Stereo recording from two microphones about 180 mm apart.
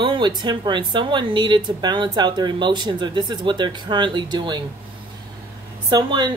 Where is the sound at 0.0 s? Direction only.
25° right (ahead or behind).